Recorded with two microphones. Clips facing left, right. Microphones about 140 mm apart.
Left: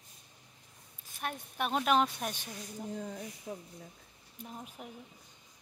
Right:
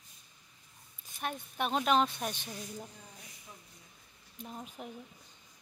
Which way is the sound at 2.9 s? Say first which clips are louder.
Left 14 dB; 60° left (ahead or behind).